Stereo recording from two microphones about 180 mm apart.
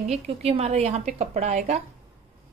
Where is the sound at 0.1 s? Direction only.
35° right (ahead or behind).